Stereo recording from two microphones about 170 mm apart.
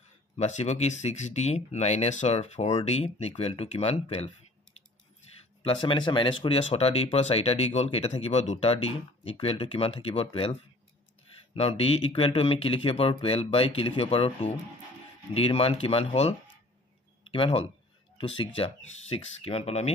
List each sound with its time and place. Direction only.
0.4 s speech: 40° left (ahead or behind)
5.6 s speech: 30° left (ahead or behind)